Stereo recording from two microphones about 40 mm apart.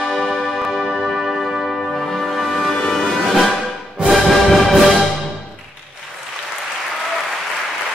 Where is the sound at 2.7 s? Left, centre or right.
Centre.